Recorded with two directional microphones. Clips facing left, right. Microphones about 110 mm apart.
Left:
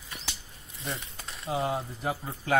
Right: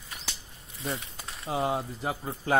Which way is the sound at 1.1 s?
20° right (ahead or behind).